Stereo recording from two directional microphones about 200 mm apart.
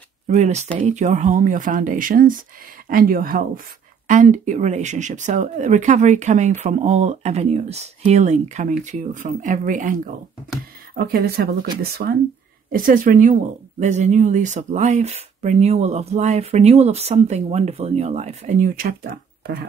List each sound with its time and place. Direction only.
0.3 s speech: 35° right (ahead or behind); by 19.6 s 50° right (ahead or behind)